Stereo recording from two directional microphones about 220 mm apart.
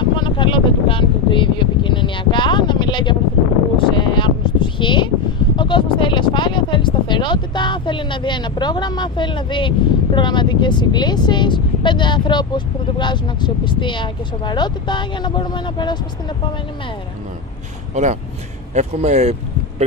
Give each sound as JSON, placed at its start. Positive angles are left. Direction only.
{"t": 0.0, "sound": "a sound", "side_deg": 20}
{"t": 5.6, "sound": "speech", "side_deg": 20}
{"t": 18.8, "sound": "speech", "side_deg": -30}